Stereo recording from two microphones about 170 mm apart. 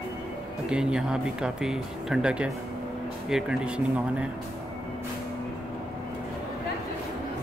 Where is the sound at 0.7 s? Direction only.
5° right (ahead or behind).